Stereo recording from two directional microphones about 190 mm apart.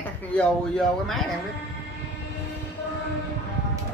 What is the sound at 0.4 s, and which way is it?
Speech, centre (ahead or behind).